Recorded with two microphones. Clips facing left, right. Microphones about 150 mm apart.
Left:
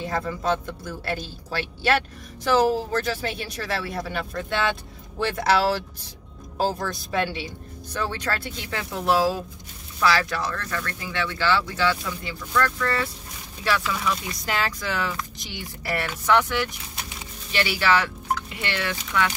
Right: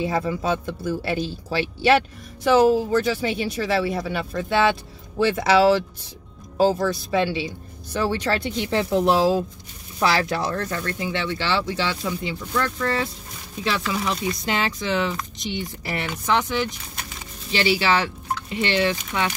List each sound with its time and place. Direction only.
0.0 s speech: 10° right (ahead or behind)
6.8 s a woman's voice: 5° right (ahead or behind)
8.6 s speech: 25° right (ahead or behind)